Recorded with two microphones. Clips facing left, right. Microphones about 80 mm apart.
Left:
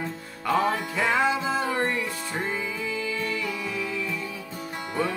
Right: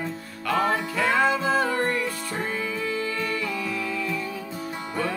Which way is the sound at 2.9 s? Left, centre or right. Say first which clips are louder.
Right 2 dB; right.